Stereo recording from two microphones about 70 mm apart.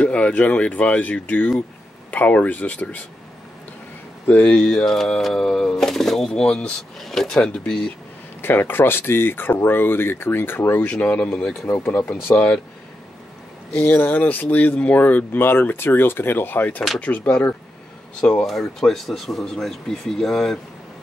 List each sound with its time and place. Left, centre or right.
0.0 s speech: centre
4.3 s speech: left
4.6 s speech: centre
8.4 s speech: left
10.9 s speech: centre
11.6 s speech: left
12.4 s speech: centre
13.8 s speech: left
18.5 s speech: centre